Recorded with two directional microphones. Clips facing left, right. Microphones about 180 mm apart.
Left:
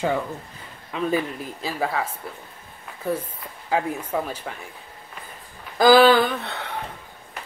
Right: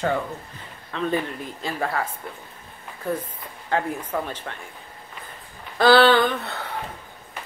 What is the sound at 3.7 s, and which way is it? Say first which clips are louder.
Speech: left 1 dB; 10° left (ahead or behind).